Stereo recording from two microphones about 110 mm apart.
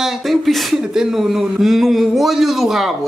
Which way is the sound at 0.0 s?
Centre (ahead or behind).